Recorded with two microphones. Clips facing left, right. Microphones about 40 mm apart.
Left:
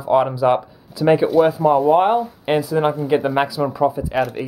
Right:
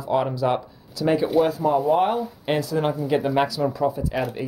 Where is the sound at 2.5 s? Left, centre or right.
Centre.